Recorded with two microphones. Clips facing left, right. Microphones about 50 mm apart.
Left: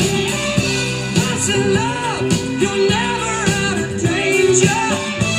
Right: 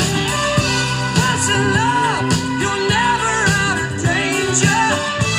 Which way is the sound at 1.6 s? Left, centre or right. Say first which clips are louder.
Right 2 dB; right.